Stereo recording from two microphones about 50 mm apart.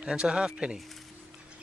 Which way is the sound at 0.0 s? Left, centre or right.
Centre.